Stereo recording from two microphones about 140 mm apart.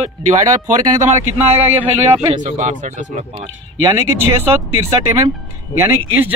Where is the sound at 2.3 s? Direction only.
55° right (ahead or behind).